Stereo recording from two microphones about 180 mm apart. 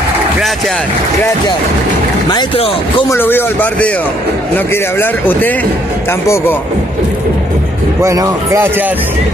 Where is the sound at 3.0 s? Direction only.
10° left (ahead or behind).